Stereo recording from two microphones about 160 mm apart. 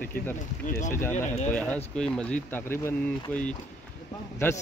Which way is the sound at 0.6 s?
55° left (ahead or behind).